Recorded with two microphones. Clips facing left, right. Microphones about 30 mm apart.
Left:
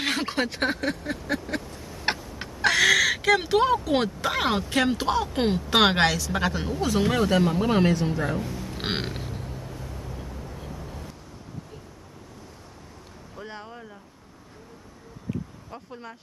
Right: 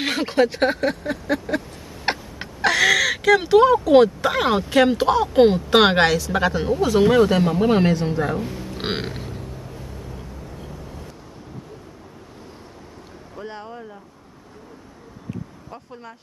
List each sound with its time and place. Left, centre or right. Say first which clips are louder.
0.0 s speech: right 7 dB; centre
2.0 s a sound: right 3 dB; centre
2.6 s a sound: right 2 dB; centre
4.0 s speech: right 8 dB; centre; by 8.8 s right
8.9 s music: right 2 dB; centre
13.4 s vehicle: right 5 dB; centre
15.7 s speech: even; centre